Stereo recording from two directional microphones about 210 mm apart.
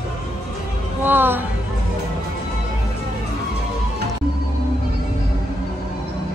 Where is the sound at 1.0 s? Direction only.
10° right (ahead or behind).